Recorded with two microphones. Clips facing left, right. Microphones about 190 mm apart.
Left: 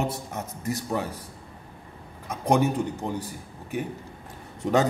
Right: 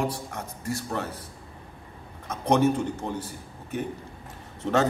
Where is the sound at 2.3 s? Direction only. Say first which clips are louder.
Even; 10° left (ahead or behind).